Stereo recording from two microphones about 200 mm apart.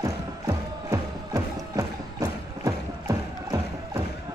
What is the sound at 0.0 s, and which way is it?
Music, 15° right (ahead or behind).